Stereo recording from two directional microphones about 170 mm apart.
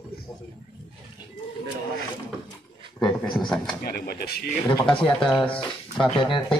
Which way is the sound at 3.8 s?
65° left (ahead or behind).